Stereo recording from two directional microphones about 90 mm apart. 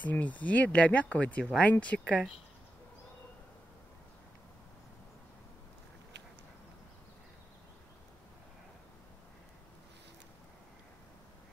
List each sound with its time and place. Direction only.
0.0 s speech: 20° left (ahead or behind)